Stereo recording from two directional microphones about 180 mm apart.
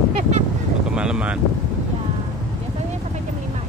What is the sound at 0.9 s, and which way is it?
Speech, 5° right (ahead or behind).